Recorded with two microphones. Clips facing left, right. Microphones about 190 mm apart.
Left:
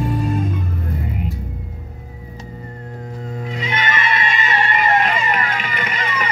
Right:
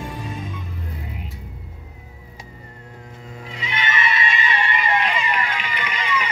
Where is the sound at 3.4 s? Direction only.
45° left (ahead or behind).